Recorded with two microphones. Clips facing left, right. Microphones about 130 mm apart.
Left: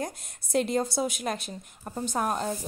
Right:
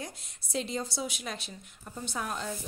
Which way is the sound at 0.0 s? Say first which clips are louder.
Left 8 dB; 55° left (ahead or behind).